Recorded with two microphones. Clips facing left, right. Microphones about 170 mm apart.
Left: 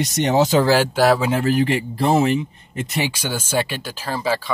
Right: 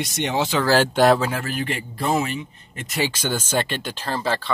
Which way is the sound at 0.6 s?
15° left (ahead or behind).